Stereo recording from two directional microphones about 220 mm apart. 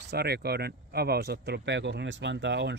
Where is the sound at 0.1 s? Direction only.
45° right (ahead or behind).